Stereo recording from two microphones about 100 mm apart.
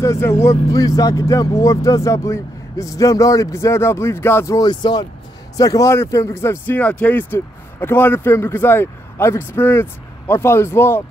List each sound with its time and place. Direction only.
0.0 s speech: 30° left (ahead or behind)
4.6 s speech: 45° left (ahead or behind)
5.6 s speech: 35° left (ahead or behind)
6.8 s speech: 15° left (ahead or behind)